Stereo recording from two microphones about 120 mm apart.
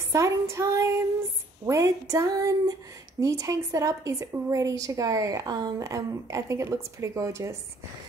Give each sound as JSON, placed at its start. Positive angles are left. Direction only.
{"t": 0.1, "sound": "speech", "side_deg": -25}